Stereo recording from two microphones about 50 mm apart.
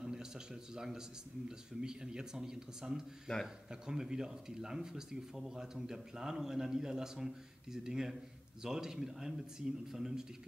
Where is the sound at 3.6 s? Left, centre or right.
Centre.